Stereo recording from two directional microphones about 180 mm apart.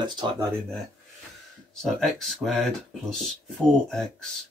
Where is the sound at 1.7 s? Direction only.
5° left (ahead or behind).